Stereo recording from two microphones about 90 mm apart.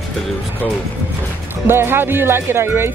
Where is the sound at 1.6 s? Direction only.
25° right (ahead or behind).